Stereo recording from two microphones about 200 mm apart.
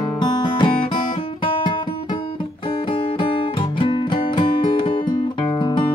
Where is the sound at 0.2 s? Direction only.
20° left (ahead or behind).